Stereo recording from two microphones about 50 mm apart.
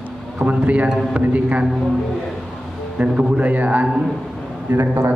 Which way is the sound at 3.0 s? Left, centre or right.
Right.